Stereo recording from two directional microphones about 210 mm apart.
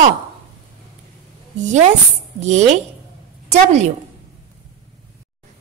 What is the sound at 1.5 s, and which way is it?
A woman's voice, 35° right (ahead or behind).